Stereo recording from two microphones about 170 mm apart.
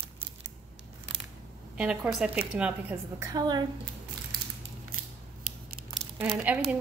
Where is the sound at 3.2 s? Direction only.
25° right (ahead or behind).